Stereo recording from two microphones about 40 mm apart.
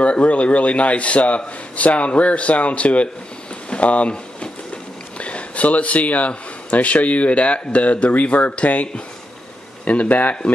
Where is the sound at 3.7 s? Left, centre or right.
Left.